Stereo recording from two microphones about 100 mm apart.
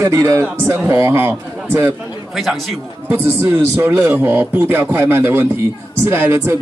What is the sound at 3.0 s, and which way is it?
A man's voice, 25° right (ahead or behind).